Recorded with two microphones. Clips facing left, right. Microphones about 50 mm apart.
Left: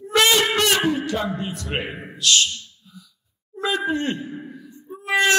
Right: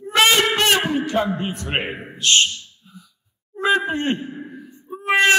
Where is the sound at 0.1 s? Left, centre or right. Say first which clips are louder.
Right 1 dB; right.